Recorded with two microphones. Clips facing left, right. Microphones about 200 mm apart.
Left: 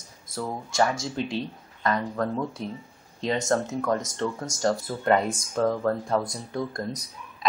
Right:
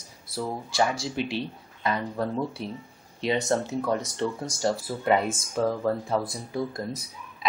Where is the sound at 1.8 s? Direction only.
10° right (ahead or behind).